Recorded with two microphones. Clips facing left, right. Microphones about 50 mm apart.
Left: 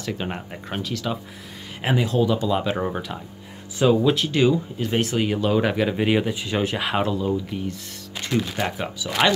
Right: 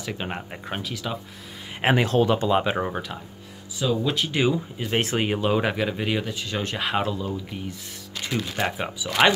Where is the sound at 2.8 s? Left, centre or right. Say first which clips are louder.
Left 1 dB; centre.